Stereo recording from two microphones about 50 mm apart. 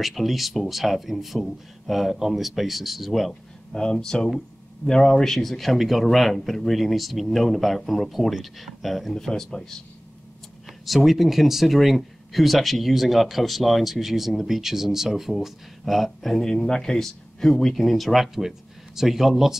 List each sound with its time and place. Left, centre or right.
0.0 s speech: centre
3.7 s speech: centre
10.9 s speech: centre